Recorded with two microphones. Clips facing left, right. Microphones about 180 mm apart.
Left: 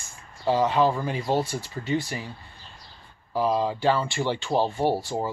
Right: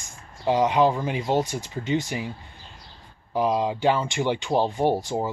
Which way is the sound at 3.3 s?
15° right (ahead or behind).